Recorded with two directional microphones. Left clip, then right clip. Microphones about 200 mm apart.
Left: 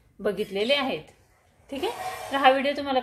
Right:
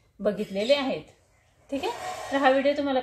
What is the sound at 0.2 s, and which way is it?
Speech, 30° left (ahead or behind).